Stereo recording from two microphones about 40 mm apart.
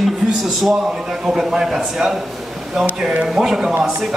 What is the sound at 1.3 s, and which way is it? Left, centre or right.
Speech, centre.